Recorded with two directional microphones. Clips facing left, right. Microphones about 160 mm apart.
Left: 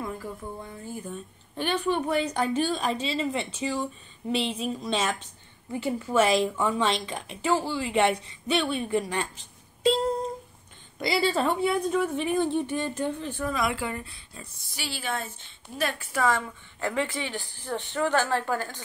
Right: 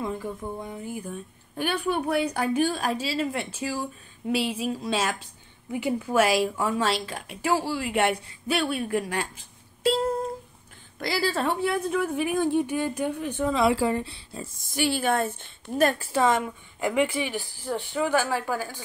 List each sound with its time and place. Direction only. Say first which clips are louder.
0.0 s a woman's voice: right 4 dB; 20° right (ahead or behind)
14.6 s a woman's voice: right 11 dB; 50° right (ahead or behind)
16.0 s a woman's voice: right 3 dB; 25° right (ahead or behind); by 18.8 s 10° right (ahead or behind)